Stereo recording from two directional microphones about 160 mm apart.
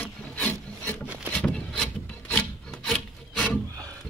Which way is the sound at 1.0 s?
10° right (ahead or behind).